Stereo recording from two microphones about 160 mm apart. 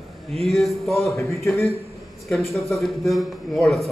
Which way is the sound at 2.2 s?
Centre (ahead or behind).